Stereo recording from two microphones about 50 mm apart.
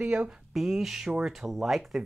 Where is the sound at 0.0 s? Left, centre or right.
Right.